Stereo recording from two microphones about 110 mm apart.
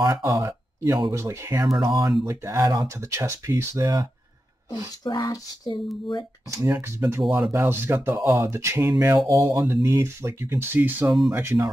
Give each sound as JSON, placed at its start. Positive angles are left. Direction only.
{"t": 0.0, "sound": "speech", "side_deg": -30}
{"t": 1.8, "sound": "speech", "side_deg": -40}
{"t": 2.2, "sound": "speech", "side_deg": -30}
{"t": 5.0, "sound": "a sound", "side_deg": 40}
{"t": 6.8, "sound": "speech", "side_deg": -25}
{"t": 7.2, "sound": "speech", "side_deg": 0}
{"t": 7.5, "sound": "speech", "side_deg": -20}
{"t": 11.1, "sound": "speech", "side_deg": -5}
{"t": 11.3, "sound": "speech", "side_deg": -25}